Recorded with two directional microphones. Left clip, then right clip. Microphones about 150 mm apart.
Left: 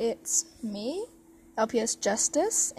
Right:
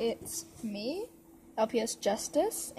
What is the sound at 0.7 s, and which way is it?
A woman's voice, 35° left (ahead or behind).